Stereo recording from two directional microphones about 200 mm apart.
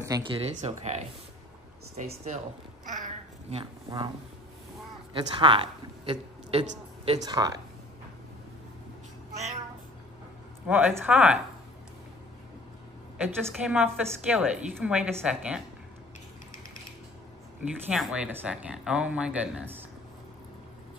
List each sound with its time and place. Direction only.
0.0 s speech: 20° right (ahead or behind)
5.1 s a woman's voice: 25° right (ahead or behind)
7.2 s speech: 20° right (ahead or behind)
10.7 s speech: 5° right (ahead or behind)
13.2 s a woman's voice: 5° right (ahead or behind)
17.9 s a woman's voice: 5° right (ahead or behind)